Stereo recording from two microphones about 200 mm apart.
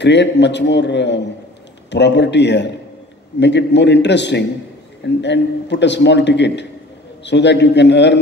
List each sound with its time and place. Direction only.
0.0 s a man's voice: 60° left (ahead or behind)